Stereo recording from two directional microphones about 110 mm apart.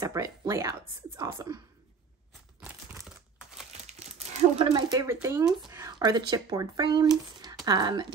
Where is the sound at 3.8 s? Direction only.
90° right.